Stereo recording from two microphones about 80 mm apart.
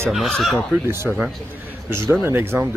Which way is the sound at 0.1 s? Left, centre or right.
Centre.